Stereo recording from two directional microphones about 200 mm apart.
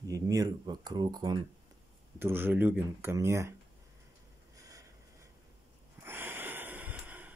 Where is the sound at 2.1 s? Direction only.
10° right (ahead or behind).